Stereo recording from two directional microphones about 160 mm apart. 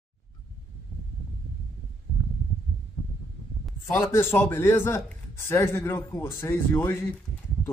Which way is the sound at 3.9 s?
15° left (ahead or behind).